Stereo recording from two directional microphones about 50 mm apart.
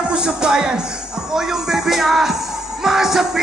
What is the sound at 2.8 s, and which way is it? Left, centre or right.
Music, centre.